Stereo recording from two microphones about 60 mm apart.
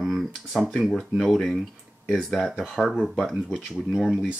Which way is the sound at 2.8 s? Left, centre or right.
Centre.